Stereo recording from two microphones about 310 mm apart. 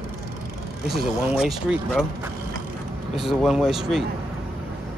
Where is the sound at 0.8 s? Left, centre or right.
Centre.